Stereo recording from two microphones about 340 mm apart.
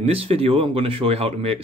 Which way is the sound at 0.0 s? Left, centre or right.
Centre.